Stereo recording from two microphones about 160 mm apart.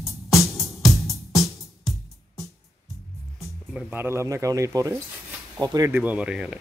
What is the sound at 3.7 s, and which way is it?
Speech, 15° right (ahead or behind).